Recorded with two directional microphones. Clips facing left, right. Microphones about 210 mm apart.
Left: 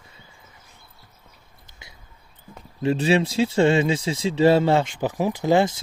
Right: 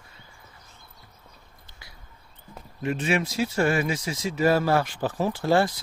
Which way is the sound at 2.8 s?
30° left (ahead or behind).